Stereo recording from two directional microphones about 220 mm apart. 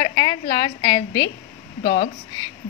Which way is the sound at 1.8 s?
40° left (ahead or behind).